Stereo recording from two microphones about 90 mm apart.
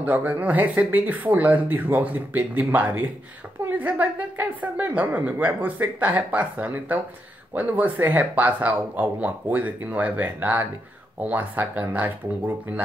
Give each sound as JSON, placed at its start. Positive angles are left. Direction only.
{"t": 0.0, "sound": "a woman's voice", "side_deg": -20}